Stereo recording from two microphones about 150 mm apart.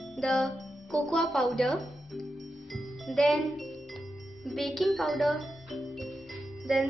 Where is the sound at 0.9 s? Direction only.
Centre (ahead or behind).